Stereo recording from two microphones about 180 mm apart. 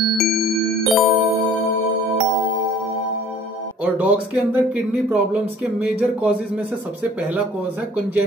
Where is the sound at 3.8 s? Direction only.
10° right (ahead or behind).